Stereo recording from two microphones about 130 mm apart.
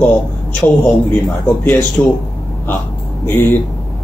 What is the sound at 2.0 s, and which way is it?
Speech, 15° left (ahead or behind).